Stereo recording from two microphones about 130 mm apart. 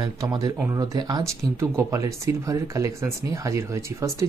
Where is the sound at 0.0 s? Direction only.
30° right (ahead or behind).